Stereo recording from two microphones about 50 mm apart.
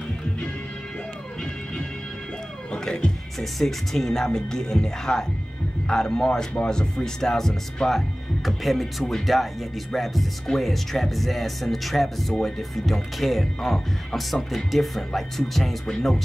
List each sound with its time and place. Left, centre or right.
2.7 s music: centre
3.3 s speech: centre